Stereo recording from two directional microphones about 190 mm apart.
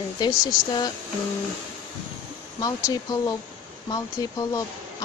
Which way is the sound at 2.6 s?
20° left (ahead or behind).